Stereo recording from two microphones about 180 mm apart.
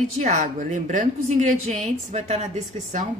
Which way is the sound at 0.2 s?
45° right (ahead or behind).